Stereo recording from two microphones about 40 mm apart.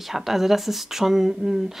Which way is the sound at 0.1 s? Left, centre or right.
Centre.